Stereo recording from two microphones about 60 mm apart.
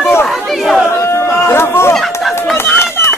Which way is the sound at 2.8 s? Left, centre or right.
Left.